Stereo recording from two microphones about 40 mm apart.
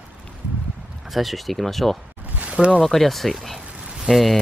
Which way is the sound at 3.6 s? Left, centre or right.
Right.